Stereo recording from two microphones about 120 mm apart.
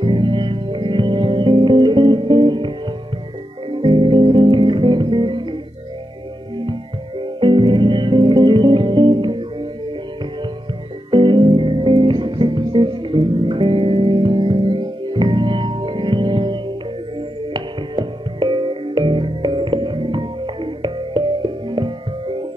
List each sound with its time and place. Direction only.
0.0 s music: 45° right (ahead or behind)
3.7 s music: 45° right (ahead or behind)
11.1 s music: 40° right (ahead or behind)